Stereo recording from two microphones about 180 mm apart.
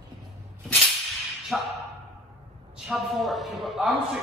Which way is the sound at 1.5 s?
5° right (ahead or behind).